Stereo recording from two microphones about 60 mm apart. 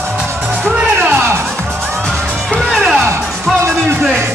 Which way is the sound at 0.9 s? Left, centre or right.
Right.